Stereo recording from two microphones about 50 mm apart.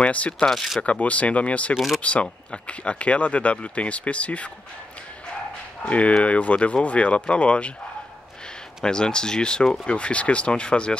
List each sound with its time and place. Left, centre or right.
0.0 s speech: left
0.5 s speech: centre
0.8 s speech: left
5.9 s speech: left
8.8 s speech: centre